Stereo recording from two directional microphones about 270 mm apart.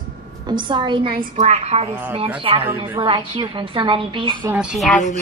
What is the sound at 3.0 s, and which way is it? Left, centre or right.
A woman's voice, centre.